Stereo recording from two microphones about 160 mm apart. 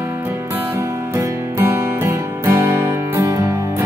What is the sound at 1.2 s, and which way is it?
Music, 15° right (ahead or behind).